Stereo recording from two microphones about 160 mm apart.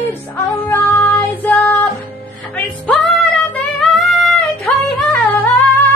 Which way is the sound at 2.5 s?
5° left (ahead or behind).